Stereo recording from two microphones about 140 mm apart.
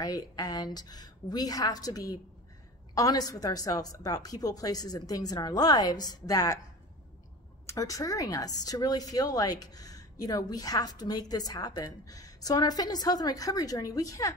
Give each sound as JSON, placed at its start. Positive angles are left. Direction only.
{"t": 0.0, "sound": "speech", "side_deg": 25}
{"t": 7.6, "sound": "speech", "side_deg": 25}